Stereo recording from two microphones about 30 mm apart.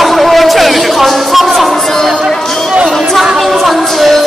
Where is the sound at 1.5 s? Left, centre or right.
Centre.